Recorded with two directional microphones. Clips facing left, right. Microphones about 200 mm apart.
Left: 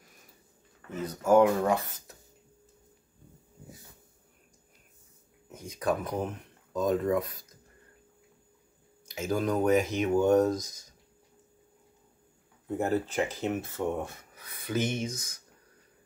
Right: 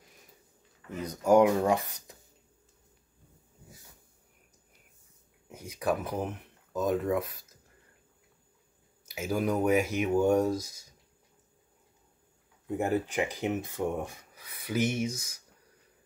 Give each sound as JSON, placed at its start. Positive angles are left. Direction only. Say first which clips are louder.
{"t": 1.0, "sound": "speech", "louder": "even", "side_deg": -15}
{"t": 5.5, "sound": "speech", "louder": "even", "side_deg": -10}
{"t": 9.0, "sound": "speech", "louder": "left 1 dB", "side_deg": -10}
{"t": 12.7, "sound": "speech", "louder": "left 1 dB", "side_deg": -15}